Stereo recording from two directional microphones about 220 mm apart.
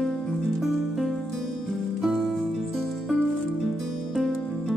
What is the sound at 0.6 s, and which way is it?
Music, centre (ahead or behind).